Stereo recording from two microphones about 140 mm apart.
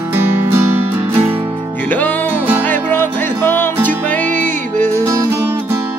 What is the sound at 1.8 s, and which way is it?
Music, 10° left (ahead or behind).